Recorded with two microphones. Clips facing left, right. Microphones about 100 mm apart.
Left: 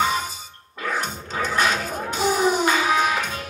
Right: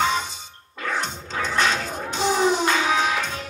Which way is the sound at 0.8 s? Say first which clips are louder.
Left 1 dB; 5° left (ahead or behind).